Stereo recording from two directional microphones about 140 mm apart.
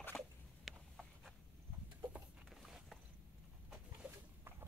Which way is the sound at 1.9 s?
10° right (ahead or behind).